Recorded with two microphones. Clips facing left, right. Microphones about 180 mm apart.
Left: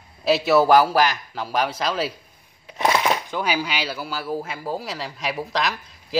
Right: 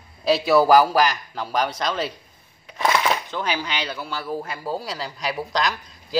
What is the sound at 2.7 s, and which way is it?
Cutlery, 20° left (ahead or behind).